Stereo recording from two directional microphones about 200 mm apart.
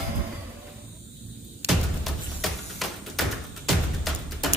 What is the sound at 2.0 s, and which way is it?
Music, centre (ahead or behind).